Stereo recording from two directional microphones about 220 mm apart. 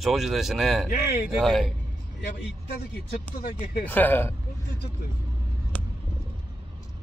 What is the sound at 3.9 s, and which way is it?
Speech, 10° left (ahead or behind).